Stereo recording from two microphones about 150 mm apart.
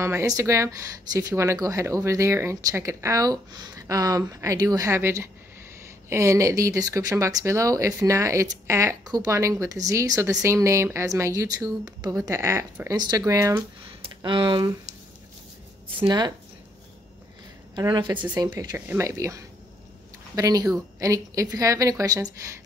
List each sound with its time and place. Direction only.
0.0 s speech: 20° right (ahead or behind)
14.2 s speech: 30° right (ahead or behind)
16.0 s speech: 25° right (ahead or behind)
17.7 s speech: 30° right (ahead or behind)
18.8 s speech: 10° right (ahead or behind)